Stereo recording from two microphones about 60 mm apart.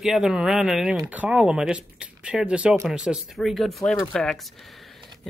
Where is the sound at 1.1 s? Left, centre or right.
Right.